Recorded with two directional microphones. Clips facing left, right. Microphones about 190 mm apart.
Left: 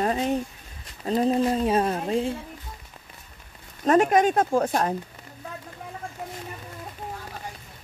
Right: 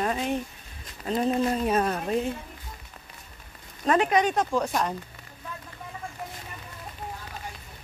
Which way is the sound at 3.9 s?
45° left (ahead or behind).